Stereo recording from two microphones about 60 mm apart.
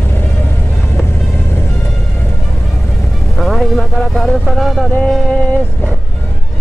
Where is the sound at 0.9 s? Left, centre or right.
Left.